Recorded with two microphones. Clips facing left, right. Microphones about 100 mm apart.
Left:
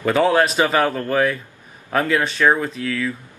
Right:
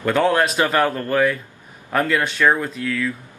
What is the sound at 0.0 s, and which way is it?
Speech, 5° left (ahead or behind).